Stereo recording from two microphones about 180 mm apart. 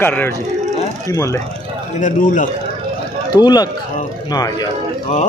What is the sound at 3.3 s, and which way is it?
Speech, 20° left (ahead or behind).